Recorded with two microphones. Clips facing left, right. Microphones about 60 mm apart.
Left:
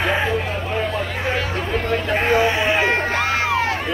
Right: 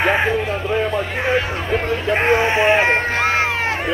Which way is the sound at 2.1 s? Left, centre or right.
Right.